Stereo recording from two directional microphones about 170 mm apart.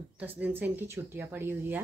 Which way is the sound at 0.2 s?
10° right (ahead or behind).